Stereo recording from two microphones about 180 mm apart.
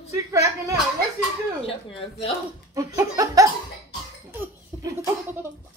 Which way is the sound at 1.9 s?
30° left (ahead or behind).